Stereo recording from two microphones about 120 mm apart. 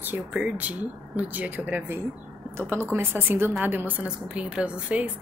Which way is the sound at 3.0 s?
20° right (ahead or behind).